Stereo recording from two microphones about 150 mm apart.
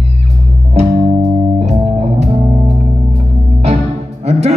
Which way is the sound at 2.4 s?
35° right (ahead or behind).